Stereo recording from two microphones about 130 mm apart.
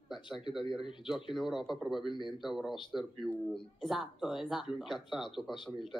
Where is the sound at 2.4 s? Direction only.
Centre (ahead or behind).